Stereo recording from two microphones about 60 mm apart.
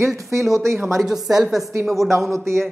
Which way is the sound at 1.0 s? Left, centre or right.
Centre.